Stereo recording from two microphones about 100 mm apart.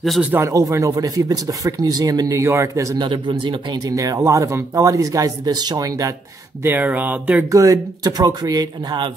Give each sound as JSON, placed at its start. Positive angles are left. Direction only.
{"t": 0.3, "sound": "speech", "side_deg": -30}
{"t": 3.0, "sound": "speech", "side_deg": -50}
{"t": 3.9, "sound": "speech", "side_deg": -35}
{"t": 6.6, "sound": "speech", "side_deg": -20}
{"t": 7.5, "sound": "speech", "side_deg": -35}